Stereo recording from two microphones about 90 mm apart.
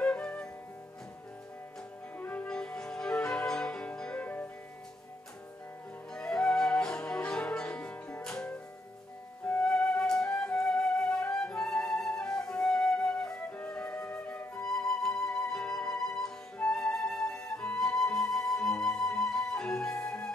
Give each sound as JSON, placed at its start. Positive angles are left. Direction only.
{"t": 0.0, "sound": "music", "side_deg": 10}
{"t": 2.1, "sound": "music", "side_deg": 15}
{"t": 6.1, "sound": "music", "side_deg": 5}
{"t": 9.5, "sound": "flute", "side_deg": 10}
{"t": 14.6, "sound": "music", "side_deg": 5}
{"t": 16.5, "sound": "flute", "side_deg": 10}
{"t": 20.0, "sound": "music", "side_deg": 10}